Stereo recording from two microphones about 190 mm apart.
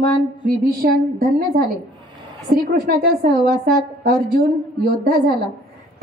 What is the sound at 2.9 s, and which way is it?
A woman's voice, 50° right (ahead or behind).